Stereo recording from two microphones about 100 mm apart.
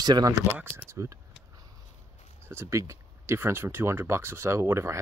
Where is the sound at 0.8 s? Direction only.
30° right (ahead or behind).